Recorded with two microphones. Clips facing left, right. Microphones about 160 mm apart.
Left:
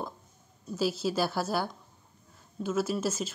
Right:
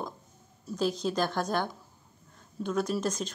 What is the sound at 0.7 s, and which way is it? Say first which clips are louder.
Speech: even; 5° left (ahead or behind).